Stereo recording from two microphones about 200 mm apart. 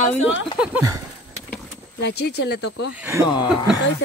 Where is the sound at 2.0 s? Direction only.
55° left (ahead or behind).